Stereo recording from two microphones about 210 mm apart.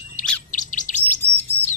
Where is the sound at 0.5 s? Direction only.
40° left (ahead or behind).